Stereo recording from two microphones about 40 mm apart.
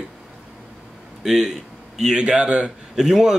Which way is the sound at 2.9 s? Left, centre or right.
Centre.